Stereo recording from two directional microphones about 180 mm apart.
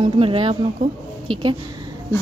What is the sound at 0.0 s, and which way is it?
A woman's voice, 30° right (ahead or behind).